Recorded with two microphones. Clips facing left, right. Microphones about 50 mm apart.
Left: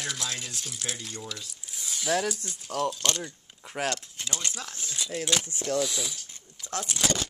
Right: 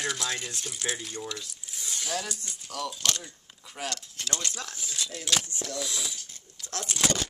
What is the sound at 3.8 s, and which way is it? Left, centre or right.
Speech, left.